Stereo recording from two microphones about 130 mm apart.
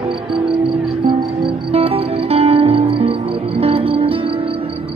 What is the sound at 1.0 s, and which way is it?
Music, 45° right (ahead or behind).